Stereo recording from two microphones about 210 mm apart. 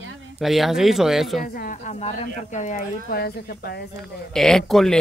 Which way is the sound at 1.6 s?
35° left (ahead or behind).